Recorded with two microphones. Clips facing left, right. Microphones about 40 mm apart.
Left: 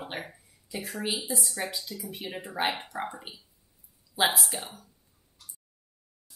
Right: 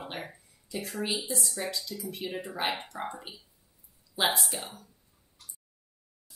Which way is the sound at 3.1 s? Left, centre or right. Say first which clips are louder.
Right 1 dB; centre.